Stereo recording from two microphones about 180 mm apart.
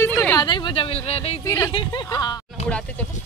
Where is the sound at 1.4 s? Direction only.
15° left (ahead or behind).